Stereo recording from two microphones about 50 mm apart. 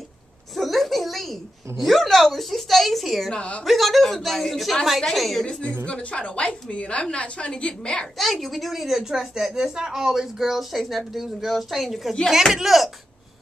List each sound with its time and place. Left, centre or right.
0.6 s a child's voice: centre
3.3 s a woman's voice: left
3.6 s a woman's voice: centre
5.9 s a woman's voice: centre
8.2 s a woman's voice: centre